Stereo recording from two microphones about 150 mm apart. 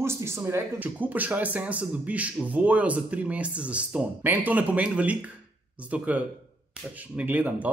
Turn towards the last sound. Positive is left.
turn(degrees=-10)  # may be behind; listen again after turning